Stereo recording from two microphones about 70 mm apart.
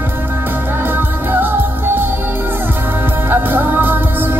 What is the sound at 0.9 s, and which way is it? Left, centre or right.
Music, right.